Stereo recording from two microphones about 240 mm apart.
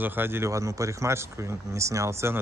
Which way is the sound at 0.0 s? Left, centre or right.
Centre.